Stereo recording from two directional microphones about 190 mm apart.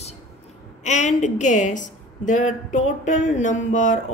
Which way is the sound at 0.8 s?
40° left (ahead or behind).